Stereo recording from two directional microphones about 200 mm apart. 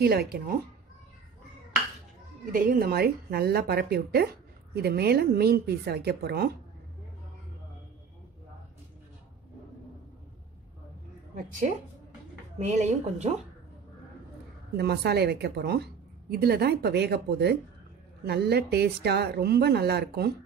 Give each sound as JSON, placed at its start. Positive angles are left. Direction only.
{"t": 0.0, "sound": "speech", "side_deg": -50}
{"t": 2.5, "sound": "speech", "side_deg": -45}
{"t": 12.5, "sound": "a woman's voice", "side_deg": -35}
{"t": 14.8, "sound": "a woman's voice", "side_deg": -55}